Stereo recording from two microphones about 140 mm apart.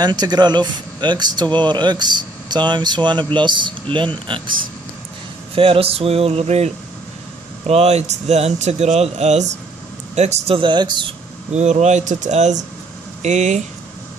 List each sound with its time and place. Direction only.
0.0 s speech: 30° right (ahead or behind)
5.5 s speech: 40° right (ahead or behind)
11.5 s speech: 55° right (ahead or behind)